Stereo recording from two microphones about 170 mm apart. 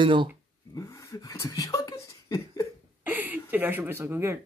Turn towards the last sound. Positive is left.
turn(degrees=-15)  # may be behind; listen again after turning